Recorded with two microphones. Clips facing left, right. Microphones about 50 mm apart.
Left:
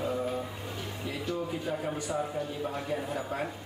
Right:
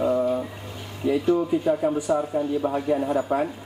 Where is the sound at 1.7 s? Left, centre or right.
Centre.